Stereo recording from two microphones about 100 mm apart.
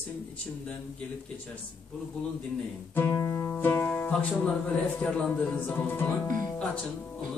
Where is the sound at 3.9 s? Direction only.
10° left (ahead or behind).